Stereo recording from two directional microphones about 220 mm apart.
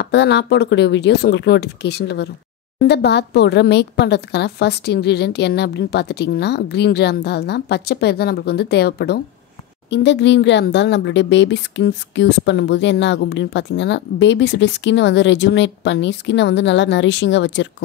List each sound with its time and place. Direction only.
0.0 s speech: 50° left (ahead or behind)